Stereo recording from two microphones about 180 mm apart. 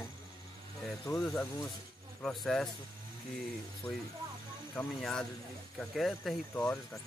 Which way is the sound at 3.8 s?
5° left (ahead or behind).